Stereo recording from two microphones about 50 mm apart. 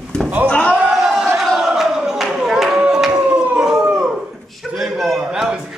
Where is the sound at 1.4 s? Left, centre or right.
Centre.